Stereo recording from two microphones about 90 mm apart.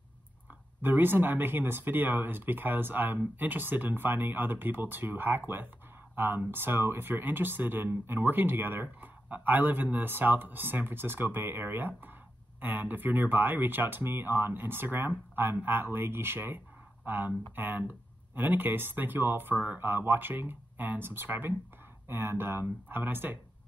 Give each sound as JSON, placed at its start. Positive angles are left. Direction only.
{"t": 0.8, "sound": "speech", "side_deg": -20}